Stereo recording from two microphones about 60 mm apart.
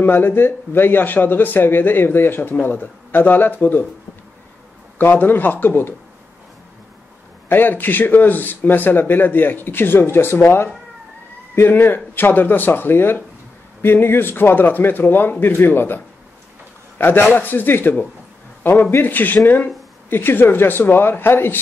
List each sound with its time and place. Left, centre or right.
0.0 s a man's voice: left
4.9 s a man's voice: left
7.4 s a man's voice: left
11.5 s a man's voice: left
17.0 s a man's voice: left